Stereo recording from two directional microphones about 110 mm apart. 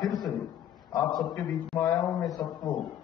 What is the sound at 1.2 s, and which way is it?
A man's voice, centre (ahead or behind).